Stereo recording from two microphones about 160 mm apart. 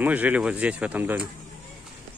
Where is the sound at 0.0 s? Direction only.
10° right (ahead or behind).